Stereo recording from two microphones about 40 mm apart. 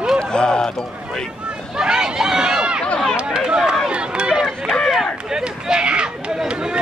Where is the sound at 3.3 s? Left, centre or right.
Centre.